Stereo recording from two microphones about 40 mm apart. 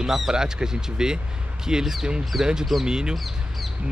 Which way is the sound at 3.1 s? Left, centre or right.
Centre.